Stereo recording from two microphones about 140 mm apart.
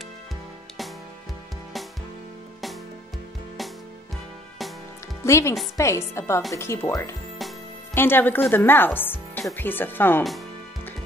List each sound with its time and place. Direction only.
5.2 s speech: 20° left (ahead or behind)